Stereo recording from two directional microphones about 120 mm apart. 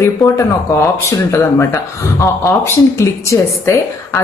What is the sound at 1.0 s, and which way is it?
Speech, 20° left (ahead or behind).